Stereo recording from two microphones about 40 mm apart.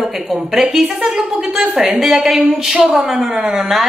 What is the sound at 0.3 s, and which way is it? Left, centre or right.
A woman's voice, centre.